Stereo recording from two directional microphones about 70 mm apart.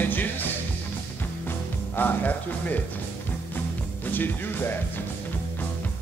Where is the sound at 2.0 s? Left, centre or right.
Left.